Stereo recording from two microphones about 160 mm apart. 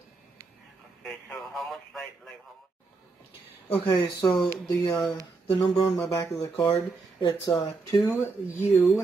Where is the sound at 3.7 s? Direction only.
30° left (ahead or behind).